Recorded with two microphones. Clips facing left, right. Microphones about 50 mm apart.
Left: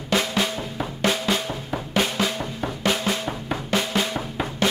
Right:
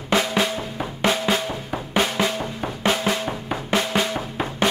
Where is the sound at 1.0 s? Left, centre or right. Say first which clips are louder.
Right 2 dB; right.